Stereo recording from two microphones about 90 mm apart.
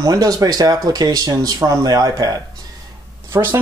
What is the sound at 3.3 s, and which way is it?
Speech, 25° right (ahead or behind).